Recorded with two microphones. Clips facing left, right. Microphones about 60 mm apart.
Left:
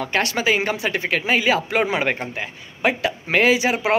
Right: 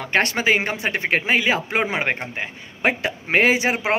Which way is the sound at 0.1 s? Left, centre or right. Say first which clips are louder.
Right 2 dB; right.